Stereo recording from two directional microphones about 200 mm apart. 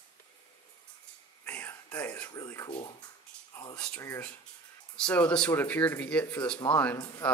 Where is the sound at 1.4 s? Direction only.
10° left (ahead or behind).